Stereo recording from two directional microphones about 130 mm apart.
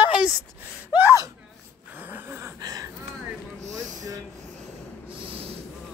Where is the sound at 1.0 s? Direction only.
20° right (ahead or behind).